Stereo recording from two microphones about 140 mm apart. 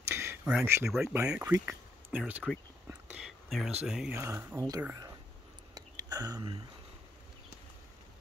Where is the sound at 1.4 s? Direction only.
20° right (ahead or behind).